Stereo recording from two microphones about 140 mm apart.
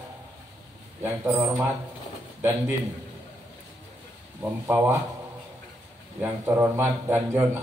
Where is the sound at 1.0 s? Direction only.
15° right (ahead or behind).